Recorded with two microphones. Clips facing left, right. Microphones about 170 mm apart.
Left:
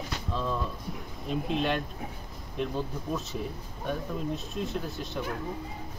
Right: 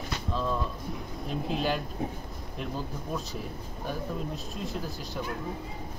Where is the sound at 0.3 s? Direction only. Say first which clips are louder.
Right 1 dB; centre (ahead or behind).